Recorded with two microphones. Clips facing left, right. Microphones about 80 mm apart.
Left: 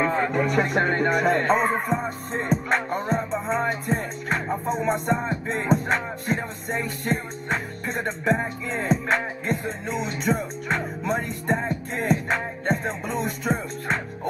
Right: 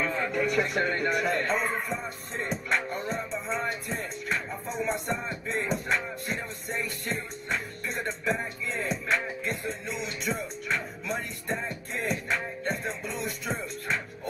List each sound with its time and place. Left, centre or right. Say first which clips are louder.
0.0 s speech: left 6 dB; left